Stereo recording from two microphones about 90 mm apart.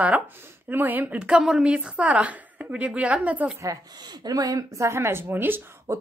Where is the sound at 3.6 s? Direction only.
45° right (ahead or behind); by 6.0 s 25° right (ahead or behind).